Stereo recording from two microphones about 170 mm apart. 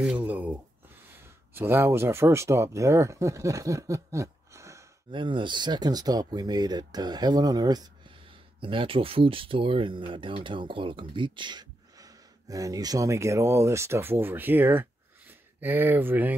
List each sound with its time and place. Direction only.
0.0 s speech: 10° right (ahead or behind)
5.1 s speech: 30° right (ahead or behind); by 16.3 s 10° right (ahead or behind)